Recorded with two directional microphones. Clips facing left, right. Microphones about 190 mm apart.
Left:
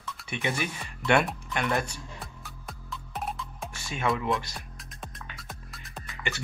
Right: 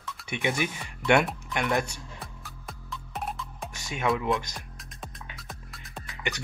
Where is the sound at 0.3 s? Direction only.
15° right (ahead or behind).